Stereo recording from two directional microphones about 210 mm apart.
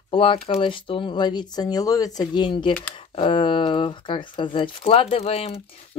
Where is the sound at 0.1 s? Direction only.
25° left (ahead or behind).